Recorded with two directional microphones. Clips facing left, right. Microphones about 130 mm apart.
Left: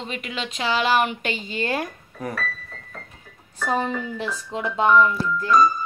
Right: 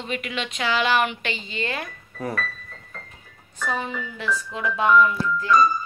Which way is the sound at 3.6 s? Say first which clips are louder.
Left 4 dB; 35° left (ahead or behind).